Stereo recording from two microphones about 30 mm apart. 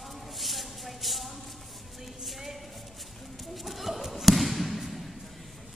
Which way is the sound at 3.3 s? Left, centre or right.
Centre.